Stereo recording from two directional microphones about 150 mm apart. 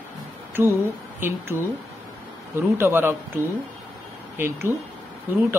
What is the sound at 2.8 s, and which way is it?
Speech, 15° right (ahead or behind).